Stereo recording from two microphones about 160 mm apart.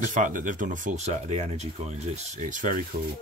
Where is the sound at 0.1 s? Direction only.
55° right (ahead or behind).